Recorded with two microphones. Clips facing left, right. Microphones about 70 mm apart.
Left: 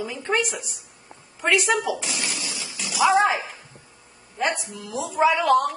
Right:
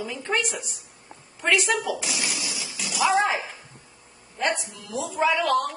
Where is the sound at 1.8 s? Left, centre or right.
Centre.